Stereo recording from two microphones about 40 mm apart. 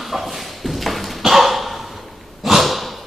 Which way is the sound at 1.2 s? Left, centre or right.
Centre.